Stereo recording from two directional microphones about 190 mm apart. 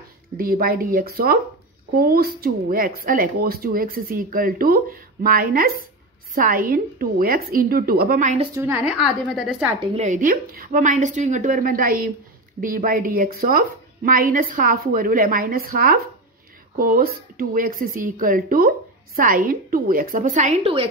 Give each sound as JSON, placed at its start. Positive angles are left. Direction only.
{"t": 0.4, "sound": "speech", "side_deg": -50}
{"t": 8.5, "sound": "a woman's voice", "side_deg": -10}
{"t": 8.9, "sound": "a woman's voice", "side_deg": 0}
{"t": 9.8, "sound": "speech", "side_deg": -35}